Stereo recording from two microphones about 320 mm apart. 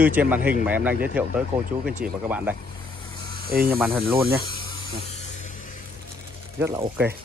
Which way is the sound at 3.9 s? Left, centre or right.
Centre.